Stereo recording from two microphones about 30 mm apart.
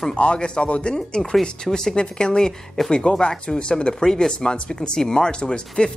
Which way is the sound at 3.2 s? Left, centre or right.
Left.